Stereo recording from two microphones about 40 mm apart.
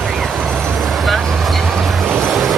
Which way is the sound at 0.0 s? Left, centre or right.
Centre.